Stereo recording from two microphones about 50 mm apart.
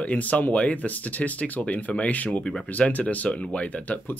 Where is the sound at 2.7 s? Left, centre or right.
Left.